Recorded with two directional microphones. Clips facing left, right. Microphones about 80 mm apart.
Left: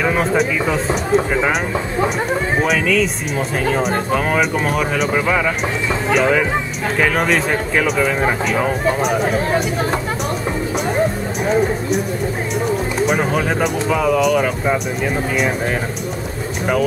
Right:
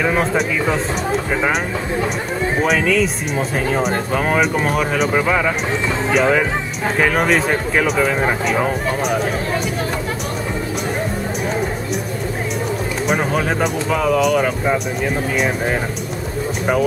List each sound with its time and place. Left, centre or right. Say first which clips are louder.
0.0 s speech: left 1 dB; centre
2.6 s speech: right 2 dB; centre
13.0 s speech: even; centre